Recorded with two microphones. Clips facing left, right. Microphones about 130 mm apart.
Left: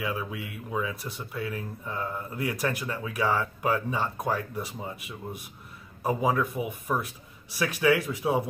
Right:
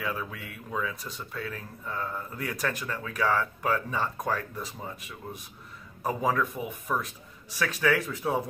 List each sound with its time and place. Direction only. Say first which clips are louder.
0.0 s speech: left 2 dB; 10° left (ahead or behind)
6.0 s speech: left 2 dB; 15° left (ahead or behind)